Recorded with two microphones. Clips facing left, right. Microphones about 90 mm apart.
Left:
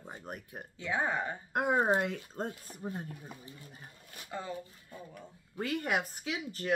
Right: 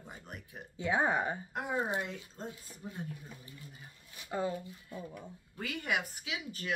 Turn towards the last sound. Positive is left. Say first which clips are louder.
# left 4 dB
turn(degrees=40)  # may be behind; listen again after turning